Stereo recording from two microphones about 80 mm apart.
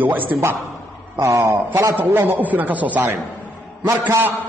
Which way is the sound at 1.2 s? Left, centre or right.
Right.